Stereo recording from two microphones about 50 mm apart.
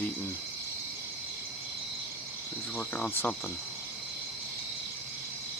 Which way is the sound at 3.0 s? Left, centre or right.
Left.